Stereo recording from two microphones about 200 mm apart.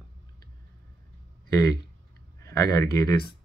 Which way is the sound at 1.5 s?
20° left (ahead or behind).